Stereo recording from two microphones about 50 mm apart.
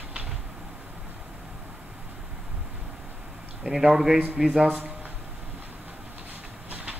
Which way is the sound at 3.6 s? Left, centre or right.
Centre.